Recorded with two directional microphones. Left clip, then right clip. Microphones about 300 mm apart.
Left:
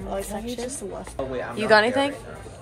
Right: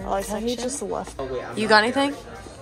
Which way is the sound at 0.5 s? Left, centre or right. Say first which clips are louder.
Right 5 dB; right.